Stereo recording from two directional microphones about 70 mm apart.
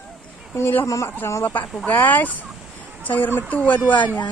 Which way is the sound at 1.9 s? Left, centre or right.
Left.